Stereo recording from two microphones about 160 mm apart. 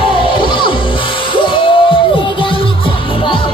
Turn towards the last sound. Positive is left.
turn(degrees=30)  # may be behind; listen again after turning